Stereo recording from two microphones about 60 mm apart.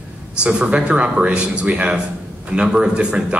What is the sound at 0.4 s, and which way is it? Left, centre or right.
A man's voice, centre.